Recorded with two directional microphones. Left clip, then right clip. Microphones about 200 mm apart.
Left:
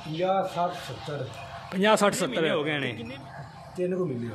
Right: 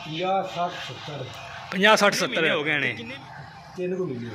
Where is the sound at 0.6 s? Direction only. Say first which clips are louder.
Even; 15° left (ahead or behind).